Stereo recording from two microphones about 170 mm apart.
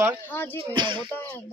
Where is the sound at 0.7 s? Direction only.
25° right (ahead or behind).